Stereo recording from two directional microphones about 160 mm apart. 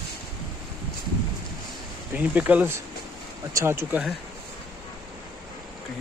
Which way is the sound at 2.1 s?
10° right (ahead or behind).